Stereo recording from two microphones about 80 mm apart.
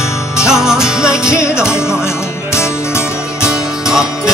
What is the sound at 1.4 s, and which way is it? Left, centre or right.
Music, left.